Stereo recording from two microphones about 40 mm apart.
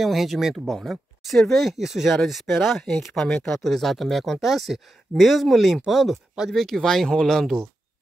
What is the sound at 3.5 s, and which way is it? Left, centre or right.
Speech, centre.